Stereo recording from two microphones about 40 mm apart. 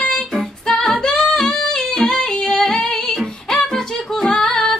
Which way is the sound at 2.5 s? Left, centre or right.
Centre.